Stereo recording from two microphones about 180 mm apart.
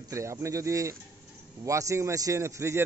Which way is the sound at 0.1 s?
15° right (ahead or behind).